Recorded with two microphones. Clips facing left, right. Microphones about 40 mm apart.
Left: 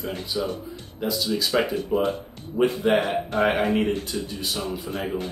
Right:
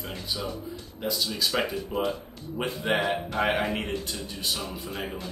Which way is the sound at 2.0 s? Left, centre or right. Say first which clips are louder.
Left 2 dB; left.